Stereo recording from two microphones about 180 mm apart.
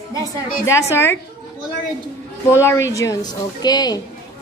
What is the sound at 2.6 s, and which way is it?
A woman's voice, 15° left (ahead or behind).